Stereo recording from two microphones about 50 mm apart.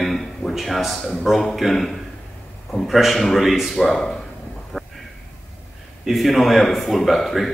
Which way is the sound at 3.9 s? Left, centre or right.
Centre.